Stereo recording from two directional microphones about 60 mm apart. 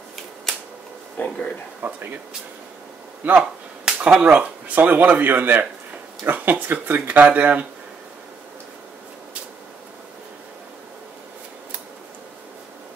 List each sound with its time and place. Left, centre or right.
1.1 s speech: left
1.8 s speech: right
3.3 s speech: centre